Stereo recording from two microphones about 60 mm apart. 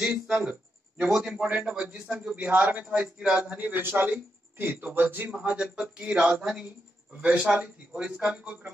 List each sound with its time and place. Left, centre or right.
0.0 s a man's voice: centre; by 5.4 s right
5.4 s a man's voice: right